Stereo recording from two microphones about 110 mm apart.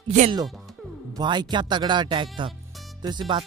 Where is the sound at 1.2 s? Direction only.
45° right (ahead or behind).